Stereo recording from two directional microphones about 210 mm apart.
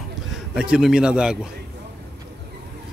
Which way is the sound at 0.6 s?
5° right (ahead or behind).